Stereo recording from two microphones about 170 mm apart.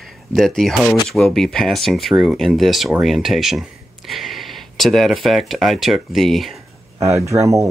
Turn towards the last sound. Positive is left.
turn(degrees=-20)  # may be behind; listen again after turning